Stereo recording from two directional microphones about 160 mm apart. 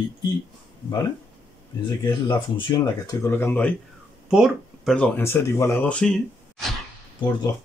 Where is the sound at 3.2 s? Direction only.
15° left (ahead or behind).